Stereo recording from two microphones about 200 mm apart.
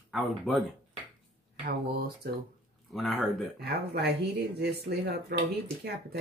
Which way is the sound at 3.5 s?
55° right (ahead or behind).